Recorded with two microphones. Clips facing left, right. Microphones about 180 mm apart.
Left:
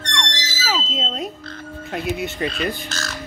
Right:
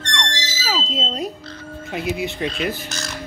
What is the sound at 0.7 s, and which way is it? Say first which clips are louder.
Smoke detector: right 1 dB; centre (ahead or behind).